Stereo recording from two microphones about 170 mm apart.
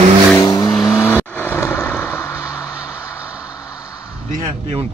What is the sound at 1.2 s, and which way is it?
Vehicle, 10° left (ahead or behind).